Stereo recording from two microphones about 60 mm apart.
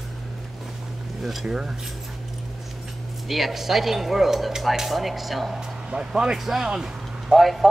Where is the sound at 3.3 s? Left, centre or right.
Centre.